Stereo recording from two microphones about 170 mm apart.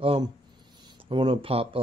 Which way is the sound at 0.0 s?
35° right (ahead or behind).